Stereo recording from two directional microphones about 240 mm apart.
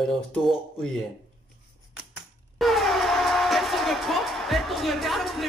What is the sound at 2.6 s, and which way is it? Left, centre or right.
Speech, centre.